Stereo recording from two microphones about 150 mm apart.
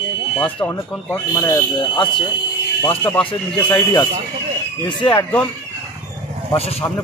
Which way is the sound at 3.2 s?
30° left (ahead or behind).